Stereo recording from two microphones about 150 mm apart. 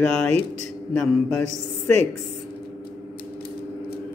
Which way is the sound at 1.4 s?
50° right (ahead or behind).